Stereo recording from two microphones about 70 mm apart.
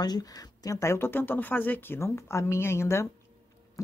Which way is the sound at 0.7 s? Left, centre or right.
Left.